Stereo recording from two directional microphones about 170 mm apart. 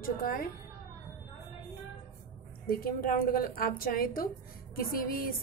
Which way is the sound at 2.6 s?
60° left (ahead or behind).